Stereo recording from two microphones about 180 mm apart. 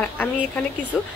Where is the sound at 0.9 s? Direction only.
Centre (ahead or behind).